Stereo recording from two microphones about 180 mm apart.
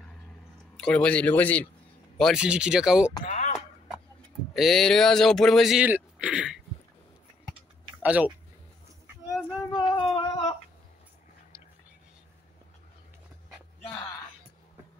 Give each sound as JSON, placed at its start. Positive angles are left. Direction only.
{"t": 0.7, "sound": "speech", "side_deg": 5}
{"t": 3.3, "sound": "a sound", "side_deg": 35}
{"t": 4.6, "sound": "speech", "side_deg": 0}
{"t": 8.0, "sound": "speech", "side_deg": -10}
{"t": 9.8, "sound": "a sound", "side_deg": 25}
{"t": 11.5, "sound": "whispering", "side_deg": -15}